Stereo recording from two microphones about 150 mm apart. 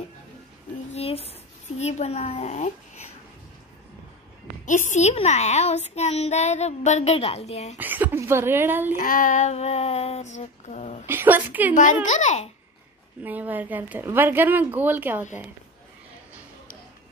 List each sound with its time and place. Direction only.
0.9 s a sound: 40° left (ahead or behind)
1.8 s speech: 45° left (ahead or behind)
4.6 s a woman's voice: 55° left (ahead or behind)
7.7 s a woman's voice: 10° right (ahead or behind)
8.9 s speech: 65° left (ahead or behind); by 11.1 s 50° left (ahead or behind)
11.1 s a woman's voice: 15° right (ahead or behind)
11.7 s speech: 60° left (ahead or behind)
13.2 s a woman's voice: 10° right (ahead or behind)